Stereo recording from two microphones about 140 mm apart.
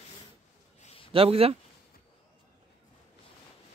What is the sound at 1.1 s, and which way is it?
Speech, 45° right (ahead or behind).